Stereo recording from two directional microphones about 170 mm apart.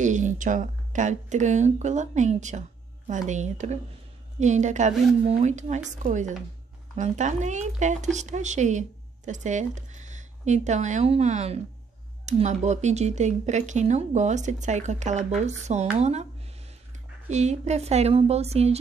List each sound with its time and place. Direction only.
0.0 s speech: 45° right (ahead or behind)